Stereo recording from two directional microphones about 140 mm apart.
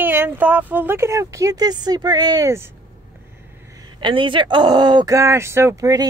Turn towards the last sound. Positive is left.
turn(degrees=-25)  # may be behind; listen again after turning